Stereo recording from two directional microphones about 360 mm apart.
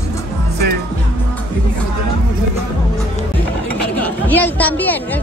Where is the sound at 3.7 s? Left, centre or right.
Centre.